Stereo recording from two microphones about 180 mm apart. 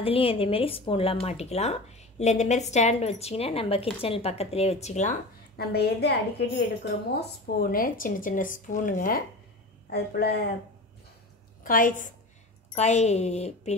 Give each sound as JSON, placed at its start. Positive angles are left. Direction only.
{"t": 0.0, "sound": "speech", "side_deg": 30}
{"t": 5.6, "sound": "a woman's voice", "side_deg": 60}
{"t": 9.8, "sound": "a woman's voice", "side_deg": 65}
{"t": 11.6, "sound": "speech", "side_deg": 50}
{"t": 12.7, "sound": "speech", "side_deg": 35}